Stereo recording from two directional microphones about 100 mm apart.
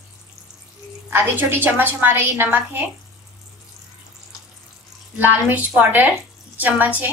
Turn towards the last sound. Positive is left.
turn(degrees=-15)  # may be behind; listen again after turning